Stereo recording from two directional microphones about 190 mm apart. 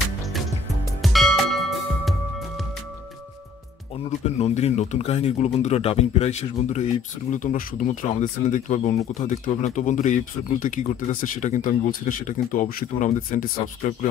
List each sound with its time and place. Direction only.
0.2 s music: centre (ahead or behind)
4.4 s speech: 35° left (ahead or behind)